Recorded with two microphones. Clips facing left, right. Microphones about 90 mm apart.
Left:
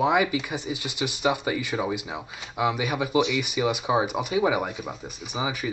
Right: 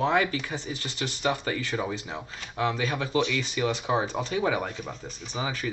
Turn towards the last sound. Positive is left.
turn(degrees=15)  # may be behind; listen again after turning